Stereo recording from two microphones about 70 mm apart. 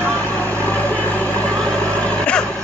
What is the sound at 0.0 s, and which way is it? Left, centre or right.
Vehicle, centre.